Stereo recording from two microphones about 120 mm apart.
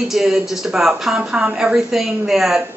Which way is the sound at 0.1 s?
5° right (ahead or behind).